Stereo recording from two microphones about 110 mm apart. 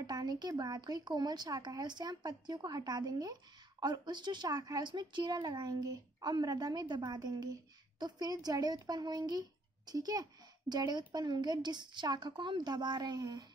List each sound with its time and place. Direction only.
0.0 s speech: 40° right (ahead or behind)